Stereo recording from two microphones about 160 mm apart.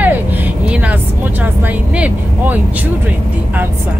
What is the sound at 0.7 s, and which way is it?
Vehicle, 10° right (ahead or behind).